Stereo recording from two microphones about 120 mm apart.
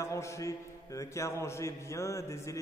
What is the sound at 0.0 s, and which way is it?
A man's voice, 25° left (ahead or behind).